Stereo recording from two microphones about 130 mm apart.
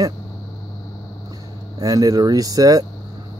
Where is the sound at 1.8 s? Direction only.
25° right (ahead or behind).